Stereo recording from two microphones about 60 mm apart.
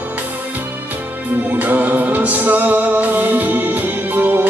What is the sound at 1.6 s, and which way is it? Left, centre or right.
Music, right.